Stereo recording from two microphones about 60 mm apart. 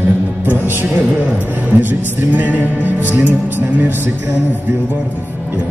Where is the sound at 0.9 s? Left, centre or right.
Right.